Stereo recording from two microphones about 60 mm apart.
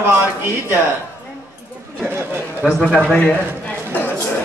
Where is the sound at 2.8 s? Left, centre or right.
Centre.